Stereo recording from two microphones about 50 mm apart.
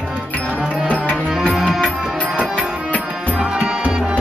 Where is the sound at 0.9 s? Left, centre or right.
Left.